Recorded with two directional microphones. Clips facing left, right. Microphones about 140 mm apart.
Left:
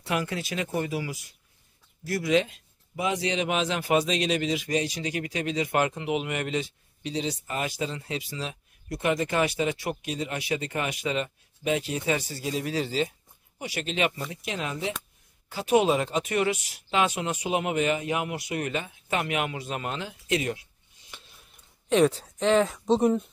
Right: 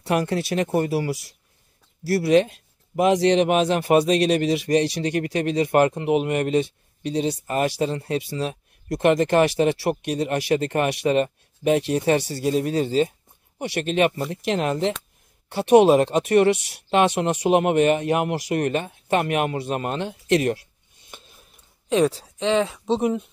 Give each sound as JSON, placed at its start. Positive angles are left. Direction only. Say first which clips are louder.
{"t": 0.1, "sound": "speech", "louder": "right 7 dB", "side_deg": -35}
{"t": 2.2, "sound": "speech", "louder": "right 6 dB", "side_deg": -50}
{"t": 5.8, "sound": "speech", "louder": "right 9 dB", "side_deg": -40}
{"t": 6.6, "sound": "speech", "louder": "right 8 dB", "side_deg": -50}
{"t": 8.4, "sound": "a sound", "louder": "right 8 dB", "side_deg": -45}
{"t": 9.0, "sound": "speech", "louder": "right 8 dB", "side_deg": -50}
{"t": 10.0, "sound": "speech", "louder": "right 9 dB", "side_deg": -60}
{"t": 11.2, "sound": "a sound", "louder": "right 7 dB", "side_deg": -40}
{"t": 11.9, "sound": "speech", "louder": "right 8 dB", "side_deg": -50}
{"t": 14.3, "sound": "speech", "louder": "right 10 dB", "side_deg": -65}
{"t": 21.9, "sound": "speech", "louder": "right 1 dB", "side_deg": -5}